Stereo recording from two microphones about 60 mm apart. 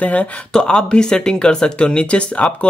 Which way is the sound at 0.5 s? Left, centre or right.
Centre.